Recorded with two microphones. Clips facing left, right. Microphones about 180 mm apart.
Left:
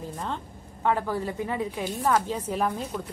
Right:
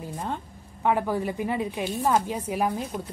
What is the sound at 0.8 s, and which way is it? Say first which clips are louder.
A woman's voice: right 2 dB; 15° right (ahead or behind).